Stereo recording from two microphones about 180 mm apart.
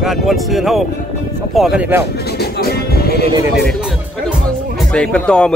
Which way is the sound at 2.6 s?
60° left (ahead or behind).